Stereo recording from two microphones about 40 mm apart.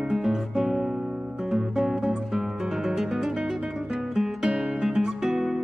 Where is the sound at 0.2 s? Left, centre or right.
Centre.